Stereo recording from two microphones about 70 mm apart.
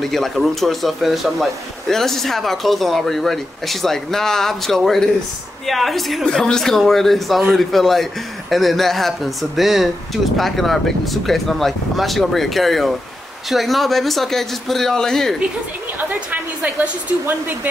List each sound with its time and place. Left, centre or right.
0.0 s a man's voice: centre
16.0 s a woman's voice: right